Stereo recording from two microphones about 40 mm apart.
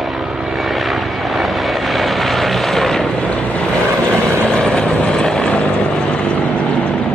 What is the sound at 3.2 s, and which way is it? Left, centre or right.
Vehicle, left.